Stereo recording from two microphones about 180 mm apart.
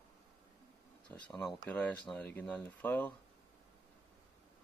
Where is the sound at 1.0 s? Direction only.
5° left (ahead or behind).